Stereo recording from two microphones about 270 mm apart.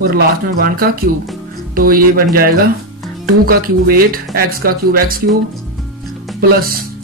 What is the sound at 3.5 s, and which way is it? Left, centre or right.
Speech, right.